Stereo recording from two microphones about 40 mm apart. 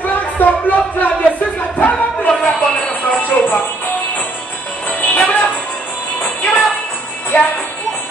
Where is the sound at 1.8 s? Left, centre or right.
Left.